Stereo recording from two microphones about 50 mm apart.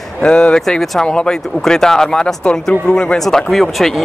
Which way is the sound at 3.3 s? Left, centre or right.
Centre.